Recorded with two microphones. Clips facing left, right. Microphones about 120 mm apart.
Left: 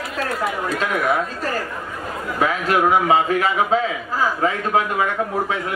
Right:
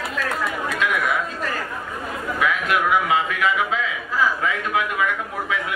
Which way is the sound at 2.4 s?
35° left (ahead or behind).